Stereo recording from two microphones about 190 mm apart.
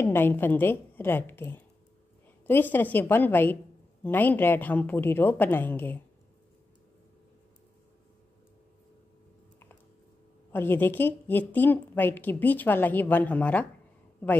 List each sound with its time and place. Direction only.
0.0 s a woman's voice: 10° left (ahead or behind)
10.5 s a woman's voice: 10° left (ahead or behind)